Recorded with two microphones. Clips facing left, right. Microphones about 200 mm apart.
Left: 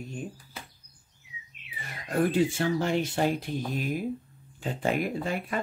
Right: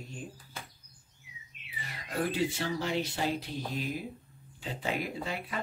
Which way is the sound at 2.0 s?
50° left (ahead or behind).